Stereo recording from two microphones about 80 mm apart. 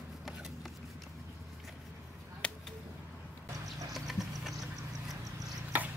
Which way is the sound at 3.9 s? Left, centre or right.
Centre.